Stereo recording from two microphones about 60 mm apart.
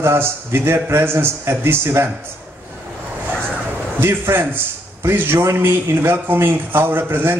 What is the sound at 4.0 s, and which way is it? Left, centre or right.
A man's voice, right.